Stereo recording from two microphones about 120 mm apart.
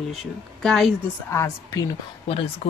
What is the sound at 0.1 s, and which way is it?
Speech, centre (ahead or behind).